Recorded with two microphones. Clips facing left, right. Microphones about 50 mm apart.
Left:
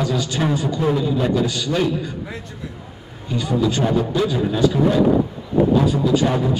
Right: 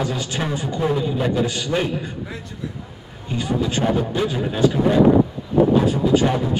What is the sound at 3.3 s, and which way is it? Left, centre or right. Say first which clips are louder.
A man's voice: left 2 dB; right.